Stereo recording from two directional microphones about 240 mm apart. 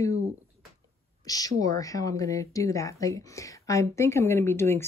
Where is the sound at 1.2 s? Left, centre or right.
Centre.